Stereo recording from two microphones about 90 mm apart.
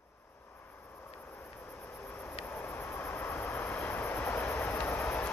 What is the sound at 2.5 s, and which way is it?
Vehicle, 20° left (ahead or behind).